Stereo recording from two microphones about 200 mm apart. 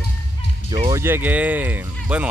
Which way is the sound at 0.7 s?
20° right (ahead or behind).